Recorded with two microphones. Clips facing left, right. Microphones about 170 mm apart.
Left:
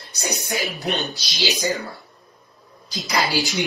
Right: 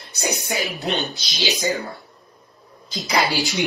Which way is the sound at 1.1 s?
20° right (ahead or behind).